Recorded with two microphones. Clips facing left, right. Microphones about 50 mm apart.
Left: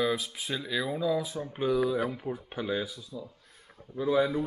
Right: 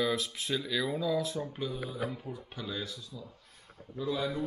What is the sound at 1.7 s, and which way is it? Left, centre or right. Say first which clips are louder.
Speech: left 11 dB; left.